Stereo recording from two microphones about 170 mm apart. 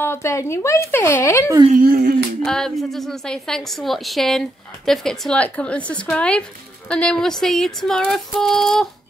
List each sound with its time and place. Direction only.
0.0 s speech: 15° left (ahead or behind)
1.7 s speech: 55° right (ahead or behind)
2.4 s a woman's voice: 5° left (ahead or behind)